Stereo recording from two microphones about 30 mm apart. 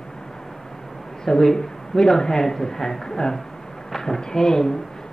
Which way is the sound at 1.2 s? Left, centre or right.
Centre.